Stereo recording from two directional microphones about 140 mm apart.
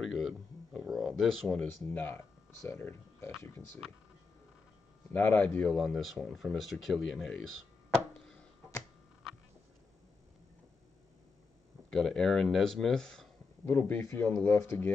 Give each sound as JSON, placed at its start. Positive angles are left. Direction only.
{"t": 0.0, "sound": "a sound", "side_deg": 0}
{"t": 1.7, "sound": "speech", "side_deg": 15}
{"t": 5.1, "sound": "speech", "side_deg": 15}
{"t": 11.9, "sound": "speech", "side_deg": 0}
{"t": 13.7, "sound": "speech", "side_deg": 15}